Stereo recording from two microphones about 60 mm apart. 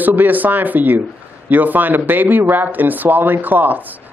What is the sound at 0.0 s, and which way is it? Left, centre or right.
A man's voice, right.